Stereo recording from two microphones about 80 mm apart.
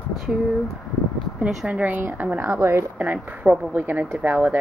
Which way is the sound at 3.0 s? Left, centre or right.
Centre.